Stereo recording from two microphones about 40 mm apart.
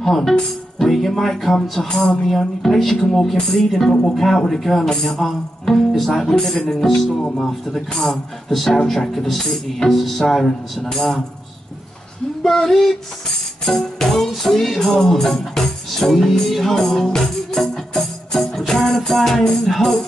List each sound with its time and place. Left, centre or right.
0.0 s music: centre
6.5 s speech: centre
6.8 s music: centre
8.6 s speech: centre
10.4 s music: centre
12.4 s music: centre
19.7 s speech: centre